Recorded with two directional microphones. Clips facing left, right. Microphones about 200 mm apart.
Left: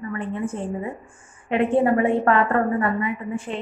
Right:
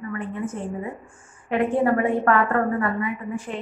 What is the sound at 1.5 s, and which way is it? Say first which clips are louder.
A woman's voice: left 2 dB; 20° left (ahead or behind).